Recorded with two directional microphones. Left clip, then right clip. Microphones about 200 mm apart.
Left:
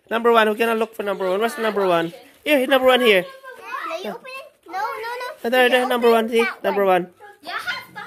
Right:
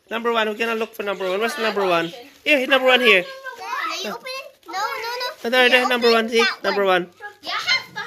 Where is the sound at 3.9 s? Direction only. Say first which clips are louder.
Right 2 dB; 20° left (ahead or behind).